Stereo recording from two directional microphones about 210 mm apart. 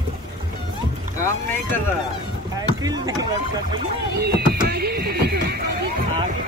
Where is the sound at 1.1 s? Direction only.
15° left (ahead or behind).